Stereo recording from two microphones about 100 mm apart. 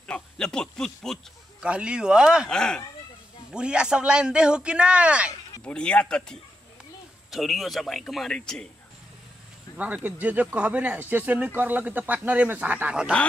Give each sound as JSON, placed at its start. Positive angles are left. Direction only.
{"t": 0.0, "sound": "a sound", "side_deg": 10}
{"t": 1.6, "sound": "speech", "side_deg": -10}
{"t": 2.5, "sound": "speech", "side_deg": 5}
{"t": 3.5, "sound": "speech", "side_deg": -10}
{"t": 5.6, "sound": "a man's voice", "side_deg": 10}
{"t": 9.8, "sound": "speech", "side_deg": -15}